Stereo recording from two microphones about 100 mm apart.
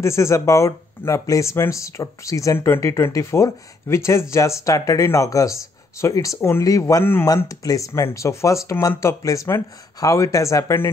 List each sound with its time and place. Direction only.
0.0 s speech: 30° left (ahead or behind)